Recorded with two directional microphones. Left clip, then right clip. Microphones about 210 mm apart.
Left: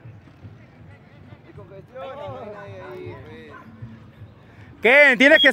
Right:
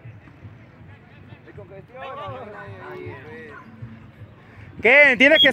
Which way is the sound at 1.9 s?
50° left (ahead or behind).